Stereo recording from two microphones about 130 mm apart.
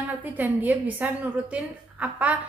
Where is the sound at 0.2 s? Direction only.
10° right (ahead or behind).